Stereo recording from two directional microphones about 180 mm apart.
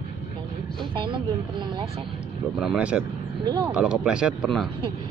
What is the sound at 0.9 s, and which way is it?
Speech, 25° right (ahead or behind).